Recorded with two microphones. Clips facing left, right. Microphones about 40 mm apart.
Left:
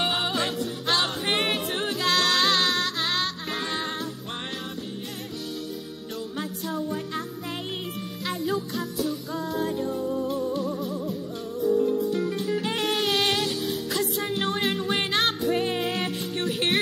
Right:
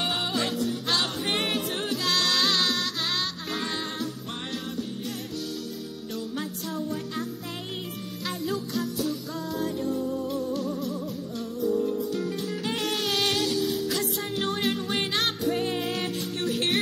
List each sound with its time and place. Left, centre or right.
0.0 s music: centre
6.3 s music: centre
8.3 s music: centre
14.8 s music: centre